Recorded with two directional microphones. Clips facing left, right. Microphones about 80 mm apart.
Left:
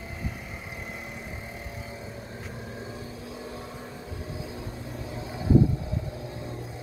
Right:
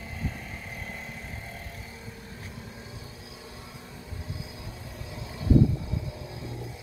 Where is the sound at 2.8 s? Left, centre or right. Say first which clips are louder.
Left 6 dB; left.